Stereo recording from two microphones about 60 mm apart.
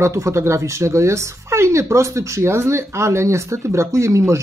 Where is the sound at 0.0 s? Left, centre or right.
Right.